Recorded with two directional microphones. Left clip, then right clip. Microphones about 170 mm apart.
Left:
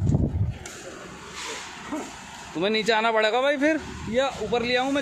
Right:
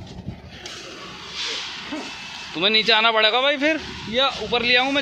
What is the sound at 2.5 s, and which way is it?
Speech, 20° left (ahead or behind).